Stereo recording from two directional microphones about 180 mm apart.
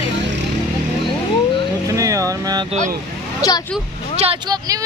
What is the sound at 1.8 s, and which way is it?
Speech, 15° right (ahead or behind).